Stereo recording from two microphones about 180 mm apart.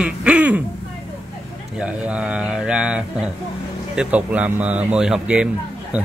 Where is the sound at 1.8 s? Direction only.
5° right (ahead or behind).